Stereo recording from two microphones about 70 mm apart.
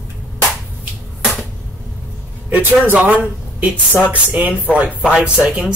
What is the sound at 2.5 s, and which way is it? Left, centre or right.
Speech, right.